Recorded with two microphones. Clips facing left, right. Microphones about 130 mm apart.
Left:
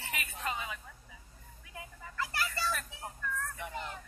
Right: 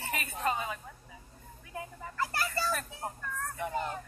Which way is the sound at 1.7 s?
40° right (ahead or behind).